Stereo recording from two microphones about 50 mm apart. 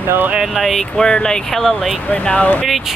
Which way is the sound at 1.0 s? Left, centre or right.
Centre.